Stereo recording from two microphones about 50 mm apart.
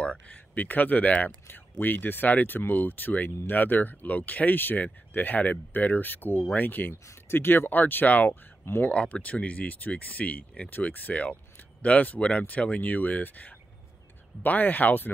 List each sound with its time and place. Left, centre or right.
0.0 s speech: left
6.9 s speech: left
8.9 s speech: left
10.7 s speech: left